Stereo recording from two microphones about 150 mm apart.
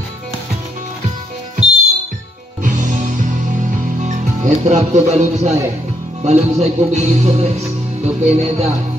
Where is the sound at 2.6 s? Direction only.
55° right (ahead or behind).